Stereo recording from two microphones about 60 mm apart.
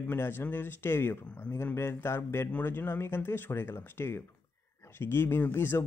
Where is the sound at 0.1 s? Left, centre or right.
Left.